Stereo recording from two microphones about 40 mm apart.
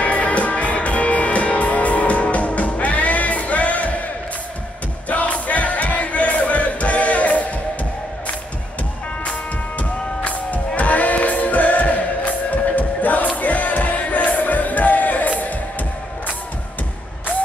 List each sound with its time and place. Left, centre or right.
0.0 s music: left
5.0 s music: left
9.2 s music: left